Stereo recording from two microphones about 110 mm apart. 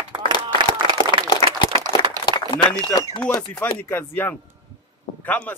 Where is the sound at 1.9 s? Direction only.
45° left (ahead or behind).